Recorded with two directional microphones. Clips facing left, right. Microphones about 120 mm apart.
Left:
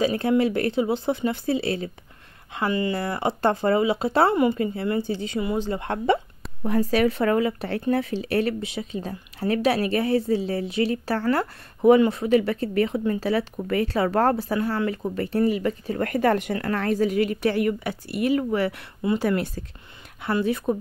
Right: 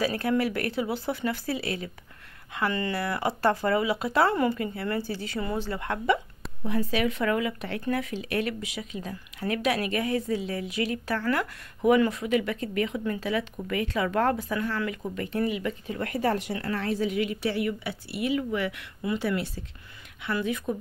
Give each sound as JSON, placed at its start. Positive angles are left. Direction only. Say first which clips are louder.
{"t": 0.0, "sound": "speech", "louder": "left 5 dB", "side_deg": 20}
{"t": 2.5, "sound": "speech", "louder": "left 4 dB", "side_deg": 20}
{"t": 6.6, "sound": "speech", "louder": "left 6 dB", "side_deg": 45}
{"t": 20.3, "sound": "speech", "louder": "left 6 dB", "side_deg": 35}